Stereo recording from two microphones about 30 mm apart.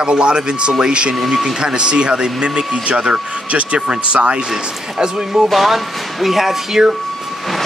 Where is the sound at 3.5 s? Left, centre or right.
Right.